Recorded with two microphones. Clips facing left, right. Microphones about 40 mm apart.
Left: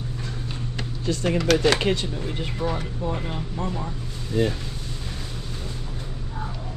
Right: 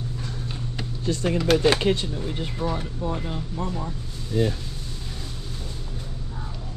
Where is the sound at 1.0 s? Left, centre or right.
Left.